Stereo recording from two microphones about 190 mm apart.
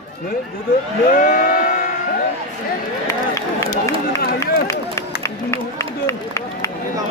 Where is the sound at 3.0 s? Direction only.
15° left (ahead or behind).